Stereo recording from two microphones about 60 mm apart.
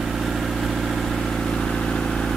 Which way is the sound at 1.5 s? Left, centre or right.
Centre.